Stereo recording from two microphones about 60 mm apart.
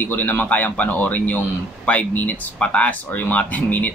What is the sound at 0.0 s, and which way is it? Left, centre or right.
Speech, left.